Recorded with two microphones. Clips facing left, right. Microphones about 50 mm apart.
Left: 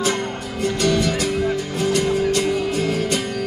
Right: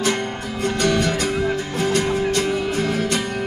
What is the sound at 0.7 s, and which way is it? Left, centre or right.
Music, right.